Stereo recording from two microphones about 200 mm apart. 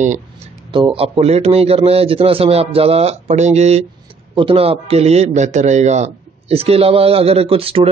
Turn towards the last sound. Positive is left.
turn(degrees=-30)  # may be behind; listen again after turning